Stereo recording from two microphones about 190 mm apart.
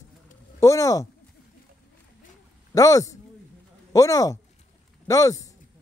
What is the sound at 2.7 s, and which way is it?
Speech, 15° left (ahead or behind).